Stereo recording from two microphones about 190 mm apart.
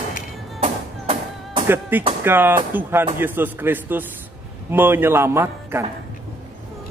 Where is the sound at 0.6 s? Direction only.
30° right (ahead or behind).